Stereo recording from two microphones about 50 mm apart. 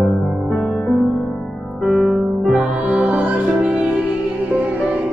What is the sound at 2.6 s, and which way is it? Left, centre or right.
Music, right.